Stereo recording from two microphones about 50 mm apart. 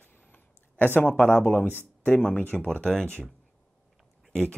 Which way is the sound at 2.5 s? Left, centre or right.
Centre.